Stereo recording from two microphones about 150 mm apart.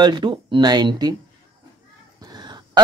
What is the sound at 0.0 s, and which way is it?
Speech, 30° right (ahead or behind).